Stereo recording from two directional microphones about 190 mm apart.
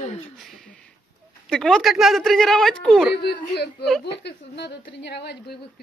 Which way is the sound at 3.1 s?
55° left (ahead or behind).